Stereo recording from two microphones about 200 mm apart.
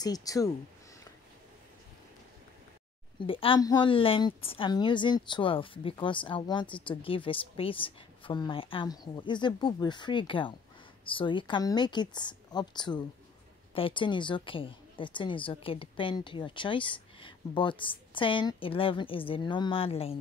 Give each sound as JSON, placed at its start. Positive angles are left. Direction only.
{"t": 0.0, "sound": "speech", "side_deg": 20}
{"t": 3.2, "sound": "a woman's voice", "side_deg": 25}